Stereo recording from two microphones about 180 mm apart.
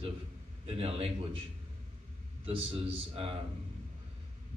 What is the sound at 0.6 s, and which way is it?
Speech, 35° right (ahead or behind).